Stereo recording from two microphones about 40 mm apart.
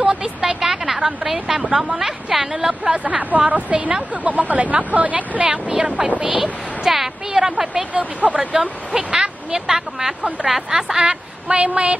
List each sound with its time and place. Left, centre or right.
0.0 s a sound: centre
2.0 s speech: centre
2.8 s speech: right
5.4 s a woman's voice: right
6.2 s a woman's voice: centre
7.9 s speech: right
8.4 s a woman's voice: centre